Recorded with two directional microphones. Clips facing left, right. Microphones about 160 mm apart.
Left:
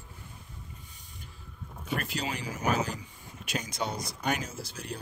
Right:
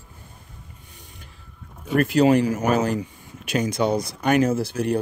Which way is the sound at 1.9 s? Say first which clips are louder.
Right 17 dB; 60° right (ahead or behind).